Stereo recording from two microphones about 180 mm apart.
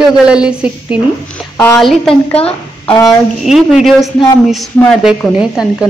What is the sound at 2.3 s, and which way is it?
Speech, 30° left (ahead or behind).